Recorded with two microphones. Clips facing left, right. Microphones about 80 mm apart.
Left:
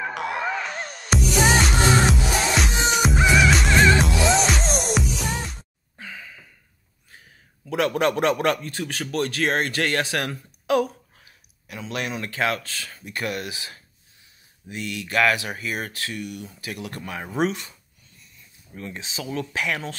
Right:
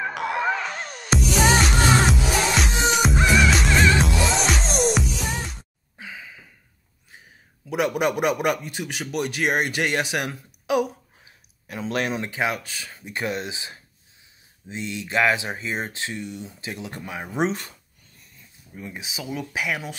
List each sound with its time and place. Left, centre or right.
0.0 s music: centre
5.9 s sigh: centre
7.1 s a man's voice: centre
11.6 s speech: right
12.2 s speech: centre
18.8 s speech: centre